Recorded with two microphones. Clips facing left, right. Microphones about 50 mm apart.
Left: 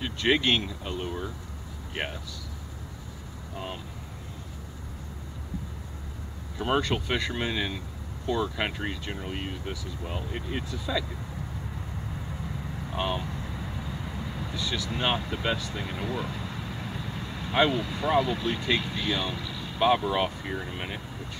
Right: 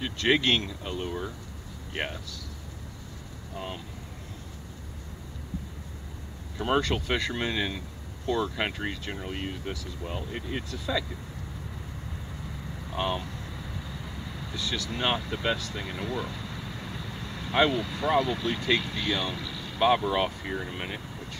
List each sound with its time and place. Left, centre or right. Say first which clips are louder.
0.0 s speech: even; centre
3.5 s speech: even; centre
6.6 s speech: even; centre
12.7 s speech: even; centre